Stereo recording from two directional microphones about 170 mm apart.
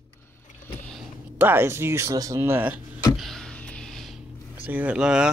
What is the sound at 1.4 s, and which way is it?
Speech, 10° right (ahead or behind).